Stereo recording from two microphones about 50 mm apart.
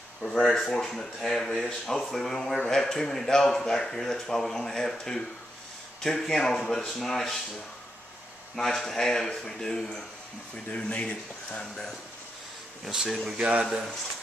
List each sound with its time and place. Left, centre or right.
0.2 s a sound: centre
0.6 s speech: centre
8.5 s speech: centre
10.5 s speech: left
12.9 s speech: centre
13.4 s speech: centre